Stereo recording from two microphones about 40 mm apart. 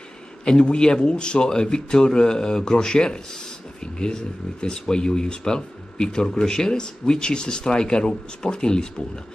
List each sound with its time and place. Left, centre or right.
0.5 s speech: left